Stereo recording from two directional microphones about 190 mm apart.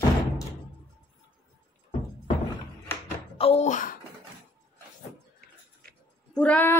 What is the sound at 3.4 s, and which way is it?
Speech, 35° left (ahead or behind).